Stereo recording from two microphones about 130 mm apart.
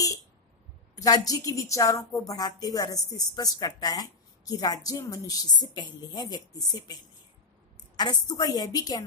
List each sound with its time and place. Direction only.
0.9 s a woman's voice: 30° left (ahead or behind)